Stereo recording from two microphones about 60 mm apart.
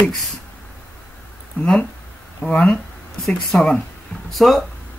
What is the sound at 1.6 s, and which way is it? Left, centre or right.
Speech, left.